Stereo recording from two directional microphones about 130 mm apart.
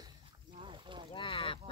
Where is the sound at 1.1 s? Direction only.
45° left (ahead or behind).